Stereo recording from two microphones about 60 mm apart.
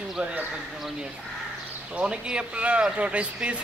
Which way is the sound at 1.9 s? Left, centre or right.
Centre.